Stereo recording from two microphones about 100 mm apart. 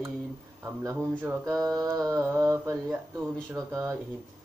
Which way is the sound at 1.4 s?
35° right (ahead or behind).